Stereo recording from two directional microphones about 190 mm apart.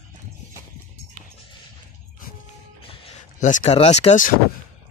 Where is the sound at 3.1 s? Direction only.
40° left (ahead or behind).